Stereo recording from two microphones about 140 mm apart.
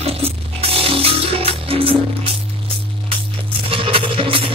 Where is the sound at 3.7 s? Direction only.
40° right (ahead or behind).